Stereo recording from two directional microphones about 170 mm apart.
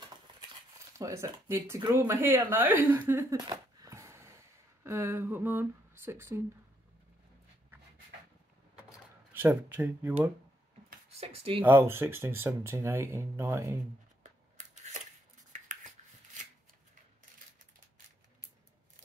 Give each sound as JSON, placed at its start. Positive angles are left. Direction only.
{"t": 0.9, "sound": "speech", "side_deg": -20}
{"t": 3.9, "sound": "a sound", "side_deg": -15}
{"t": 4.8, "sound": "speech", "side_deg": -15}
{"t": 9.3, "sound": "speech", "side_deg": -10}
{"t": 11.1, "sound": "speech", "side_deg": -35}
{"t": 11.6, "sound": "speech", "side_deg": -15}
{"t": 14.2, "sound": "scissors", "side_deg": -45}
{"t": 15.5, "sound": "a sound", "side_deg": -45}